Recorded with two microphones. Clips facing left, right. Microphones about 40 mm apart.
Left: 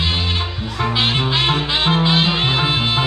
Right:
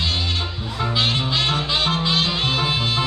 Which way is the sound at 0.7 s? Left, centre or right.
Left.